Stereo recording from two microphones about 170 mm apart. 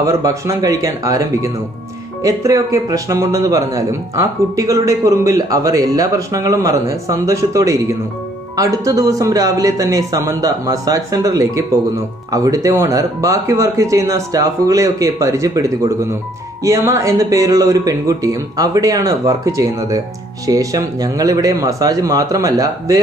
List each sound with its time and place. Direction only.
0.0 s speech: 20° right (ahead or behind)